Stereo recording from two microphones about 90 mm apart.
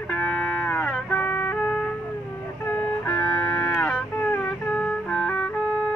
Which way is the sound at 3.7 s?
5° left (ahead or behind).